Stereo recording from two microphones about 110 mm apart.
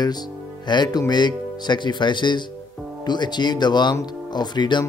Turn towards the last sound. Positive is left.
turn(degrees=40)  # may be behind; listen again after turning